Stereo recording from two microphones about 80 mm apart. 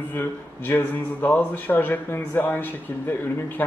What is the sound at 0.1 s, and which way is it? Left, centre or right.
Speech, left.